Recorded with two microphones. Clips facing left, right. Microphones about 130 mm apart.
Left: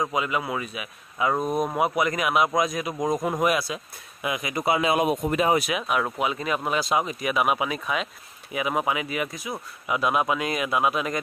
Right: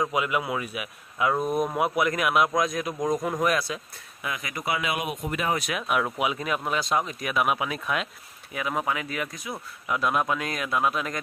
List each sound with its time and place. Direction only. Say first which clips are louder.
0.0 s speech: even; 5° right (ahead or behind)
4.2 s speech: left 5 dB; 20° left (ahead or behind); by 5.5 s 35° left (ahead or behind)
5.6 s speech: left 1 dB; 5° left (ahead or behind)
8.5 s speech: left 3 dB; 10° left (ahead or behind)